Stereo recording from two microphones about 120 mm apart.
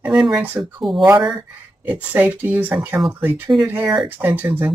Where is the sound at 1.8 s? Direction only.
10° right (ahead or behind).